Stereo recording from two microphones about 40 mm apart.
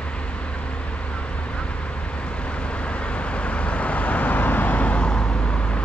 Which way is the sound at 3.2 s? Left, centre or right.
Left.